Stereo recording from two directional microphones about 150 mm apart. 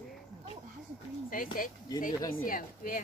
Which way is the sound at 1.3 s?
65° left (ahead or behind).